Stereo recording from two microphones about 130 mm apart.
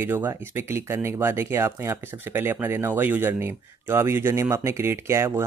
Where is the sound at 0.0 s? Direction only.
20° right (ahead or behind).